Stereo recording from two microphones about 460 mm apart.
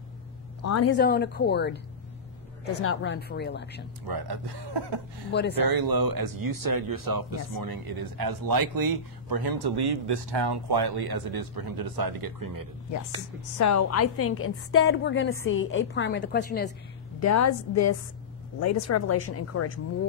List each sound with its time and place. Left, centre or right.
0.7 s speech: left
0.9 s a woman's voice: left
4.1 s a man's voice: right
5.3 s a woman's voice: left
5.7 s speech: right
13.6 s a woman's voice: left
17.2 s speech: left